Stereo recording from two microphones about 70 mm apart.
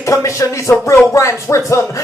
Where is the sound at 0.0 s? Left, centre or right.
Left.